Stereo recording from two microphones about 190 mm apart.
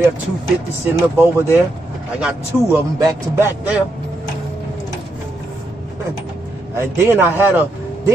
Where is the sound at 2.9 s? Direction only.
15° right (ahead or behind).